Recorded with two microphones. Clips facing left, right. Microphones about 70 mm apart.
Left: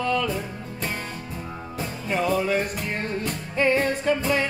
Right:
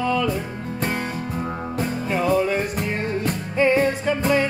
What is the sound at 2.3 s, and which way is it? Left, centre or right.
Music, centre.